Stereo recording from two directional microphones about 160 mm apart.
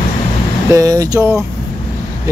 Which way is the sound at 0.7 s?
20° right (ahead or behind).